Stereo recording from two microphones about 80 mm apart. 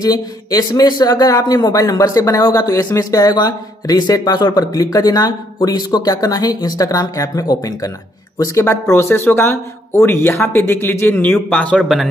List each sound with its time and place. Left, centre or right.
0.0 s speech: left
8.5 s speech: left